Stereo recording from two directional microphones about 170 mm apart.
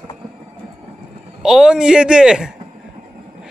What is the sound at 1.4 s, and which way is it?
A man's voice, 5° right (ahead or behind).